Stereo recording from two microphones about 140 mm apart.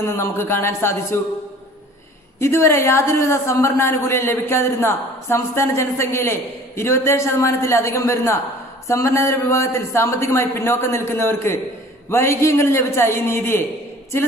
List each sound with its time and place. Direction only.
0.0 s speech: 20° left (ahead or behind)
2.3 s a woman's voice: 20° left (ahead or behind)